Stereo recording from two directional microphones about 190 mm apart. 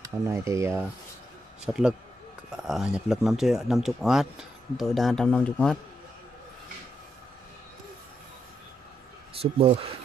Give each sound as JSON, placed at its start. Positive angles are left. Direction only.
{"t": 0.0, "sound": "speech", "side_deg": -15}
{"t": 1.7, "sound": "speech", "side_deg": -5}
{"t": 9.3, "sound": "speech", "side_deg": -30}